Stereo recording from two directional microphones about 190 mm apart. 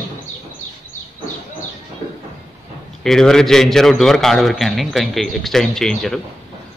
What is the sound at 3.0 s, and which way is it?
A man's voice, 5° left (ahead or behind).